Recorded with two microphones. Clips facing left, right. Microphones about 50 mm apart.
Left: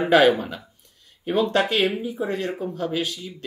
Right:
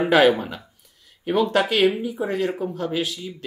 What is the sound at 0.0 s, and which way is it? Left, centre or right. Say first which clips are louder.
Speech: even; centre.